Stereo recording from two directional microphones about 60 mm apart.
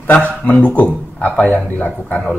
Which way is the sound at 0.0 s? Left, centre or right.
Left.